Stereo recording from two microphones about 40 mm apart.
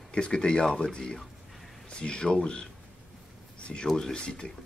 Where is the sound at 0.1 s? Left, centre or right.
Left.